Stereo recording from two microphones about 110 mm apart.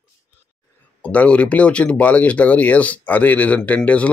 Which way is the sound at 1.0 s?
10° left (ahead or behind).